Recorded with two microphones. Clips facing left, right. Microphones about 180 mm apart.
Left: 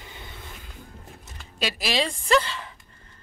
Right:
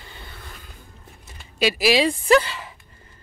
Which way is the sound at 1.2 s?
5° right (ahead or behind).